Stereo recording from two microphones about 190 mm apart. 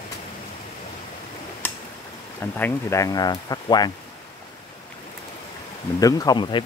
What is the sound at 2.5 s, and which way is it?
Speech, 15° left (ahead or behind).